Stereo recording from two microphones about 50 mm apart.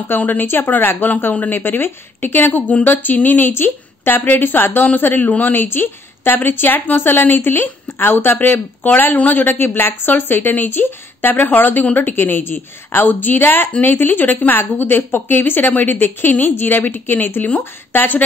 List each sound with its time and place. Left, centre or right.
0.2 s speech: left